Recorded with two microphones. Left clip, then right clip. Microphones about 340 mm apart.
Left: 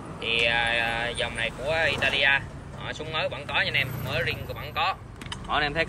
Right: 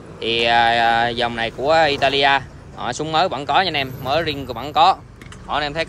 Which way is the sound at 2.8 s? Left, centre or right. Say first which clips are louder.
Right 11 dB; right.